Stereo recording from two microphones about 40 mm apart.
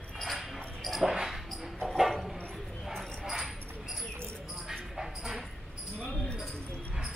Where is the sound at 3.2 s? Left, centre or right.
Centre.